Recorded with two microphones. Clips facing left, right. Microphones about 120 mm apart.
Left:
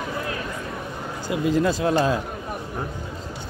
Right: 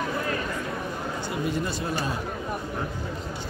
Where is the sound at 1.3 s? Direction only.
90° left.